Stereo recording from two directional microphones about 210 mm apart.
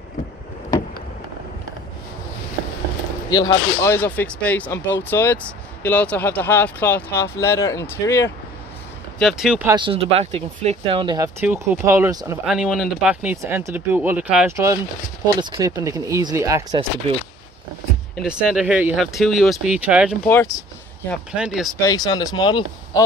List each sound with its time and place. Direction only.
3.3 s speech: 20° left (ahead or behind)
9.2 s speech: centre (ahead or behind)
9.7 s speech: 25° right (ahead or behind)
11.4 s speech: 10° right (ahead or behind)
12.4 s speech: centre (ahead or behind)
18.1 s speech: 5° right (ahead or behind)
20.2 s speech: 10° left (ahead or behind)
21.4 s speech: centre (ahead or behind)
21.7 s speech: 15° left (ahead or behind)